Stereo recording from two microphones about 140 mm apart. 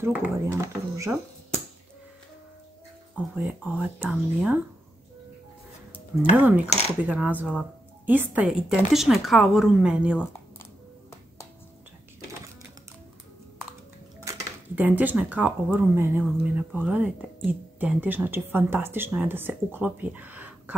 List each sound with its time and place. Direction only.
0.0 s speech: 15° right (ahead or behind)
3.3 s speech: 10° right (ahead or behind)
6.3 s speech: 10° right (ahead or behind)
14.3 s dishes: 20° right (ahead or behind)
14.8 s speech: 10° right (ahead or behind)